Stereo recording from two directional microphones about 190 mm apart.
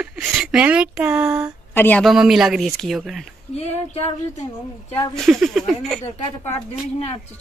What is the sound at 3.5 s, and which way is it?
Child singing, 35° left (ahead or behind).